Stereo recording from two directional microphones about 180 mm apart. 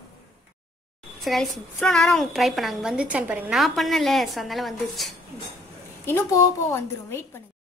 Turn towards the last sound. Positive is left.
turn(degrees=15)  # may be behind; listen again after turning